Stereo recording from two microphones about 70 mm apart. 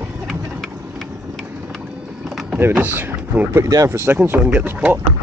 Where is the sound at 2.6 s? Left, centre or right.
Right.